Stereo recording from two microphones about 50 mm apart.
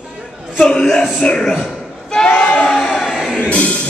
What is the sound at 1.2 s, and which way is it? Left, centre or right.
Speech, centre.